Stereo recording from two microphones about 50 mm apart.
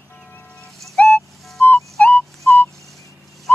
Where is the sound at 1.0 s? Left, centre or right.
Centre.